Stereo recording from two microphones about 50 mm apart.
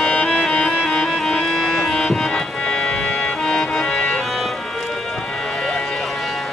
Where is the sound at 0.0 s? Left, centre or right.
Centre.